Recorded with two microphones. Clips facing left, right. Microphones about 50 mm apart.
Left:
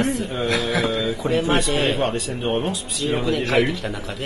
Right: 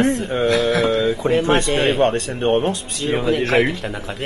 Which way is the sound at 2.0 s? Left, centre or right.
Right.